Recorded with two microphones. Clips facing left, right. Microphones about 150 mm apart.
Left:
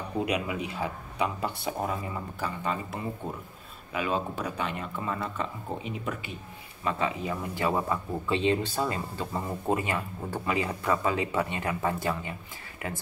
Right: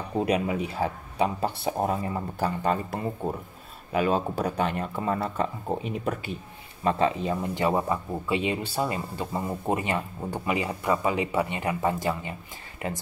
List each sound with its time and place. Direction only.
0.2 s speech: 35° right (ahead or behind)
6.8 s speech: 35° right (ahead or behind)
7.5 s speech: 20° right (ahead or behind)
12.8 s speech: 30° right (ahead or behind)